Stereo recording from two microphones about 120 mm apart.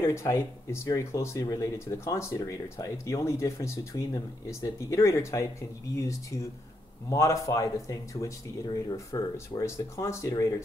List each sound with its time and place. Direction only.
0.0 s speech: 25° left (ahead or behind)